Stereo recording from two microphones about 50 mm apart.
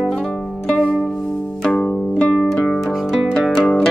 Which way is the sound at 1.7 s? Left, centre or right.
Centre.